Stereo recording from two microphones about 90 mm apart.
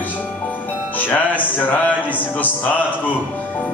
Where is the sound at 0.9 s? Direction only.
20° left (ahead or behind).